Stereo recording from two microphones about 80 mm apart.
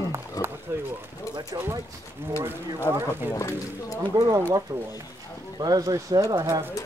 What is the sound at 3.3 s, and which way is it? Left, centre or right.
Speech, left.